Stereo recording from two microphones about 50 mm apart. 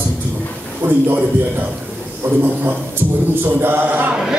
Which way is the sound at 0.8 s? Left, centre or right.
Right.